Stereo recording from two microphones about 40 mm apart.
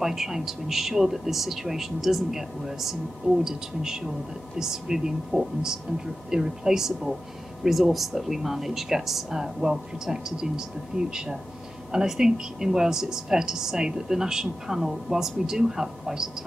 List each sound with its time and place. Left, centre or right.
0.0 s speech: centre
7.6 s speech: centre